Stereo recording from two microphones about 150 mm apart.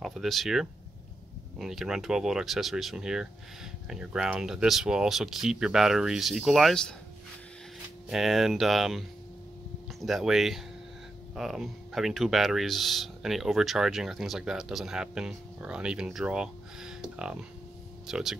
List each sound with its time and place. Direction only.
0.0 s speech: centre (ahead or behind)
8.1 s speech: centre (ahead or behind)